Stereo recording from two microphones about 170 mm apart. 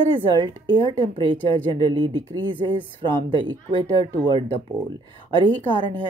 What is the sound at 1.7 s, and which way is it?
Speech, 25° right (ahead or behind).